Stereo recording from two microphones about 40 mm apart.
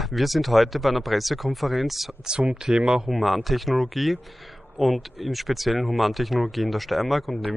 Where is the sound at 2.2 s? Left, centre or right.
Centre.